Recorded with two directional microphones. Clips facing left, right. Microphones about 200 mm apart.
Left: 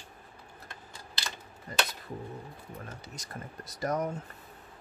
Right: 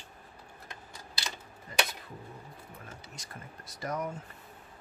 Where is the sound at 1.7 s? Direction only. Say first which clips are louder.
Even; 40° left (ahead or behind).